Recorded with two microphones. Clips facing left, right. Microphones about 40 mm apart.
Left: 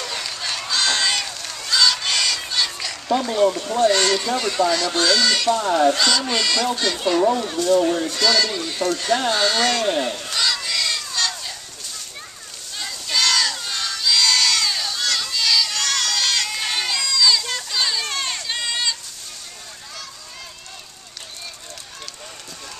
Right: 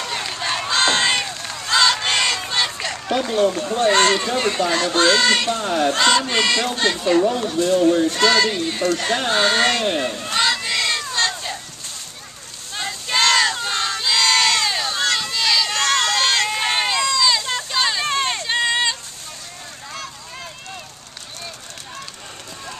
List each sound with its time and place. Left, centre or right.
0.0 s run: right
3.2 s speech: right
10.1 s a sound: right
12.7 s crowd: right